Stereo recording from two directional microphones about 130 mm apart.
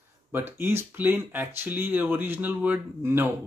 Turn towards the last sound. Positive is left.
turn(degrees=-15)  # may be behind; listen again after turning